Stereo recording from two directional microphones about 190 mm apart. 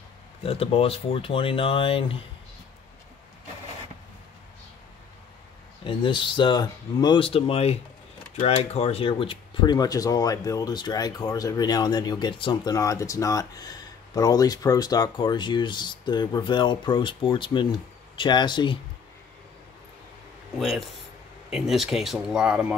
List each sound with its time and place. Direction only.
0.5 s speech: 30° left (ahead or behind)
5.9 s speech: 25° left (ahead or behind)
20.5 s speech: centre (ahead or behind)